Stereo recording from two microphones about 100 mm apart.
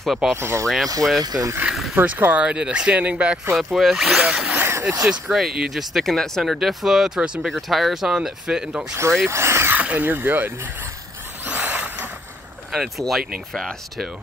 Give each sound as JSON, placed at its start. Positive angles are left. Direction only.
{"t": 0.0, "sound": "speech", "side_deg": 0}
{"t": 0.4, "sound": "speech", "side_deg": -25}
{"t": 1.2, "sound": "speech", "side_deg": -40}
{"t": 1.6, "sound": "a sound", "side_deg": -5}
{"t": 2.0, "sound": "speech", "side_deg": -20}
{"t": 4.6, "sound": "a sound", "side_deg": -25}
{"t": 5.3, "sound": "speech", "side_deg": -5}
{"t": 9.3, "sound": "a sound", "side_deg": -25}
{"t": 9.8, "sound": "speech", "side_deg": -15}
{"t": 11.4, "sound": "vehicle", "side_deg": -20}
{"t": 12.7, "sound": "speech", "side_deg": 0}